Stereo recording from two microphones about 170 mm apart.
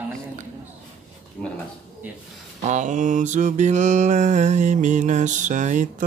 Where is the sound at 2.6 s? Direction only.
45° right (ahead or behind).